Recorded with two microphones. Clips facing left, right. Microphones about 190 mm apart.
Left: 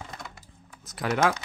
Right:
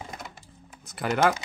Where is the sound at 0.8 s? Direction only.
Centre (ahead or behind).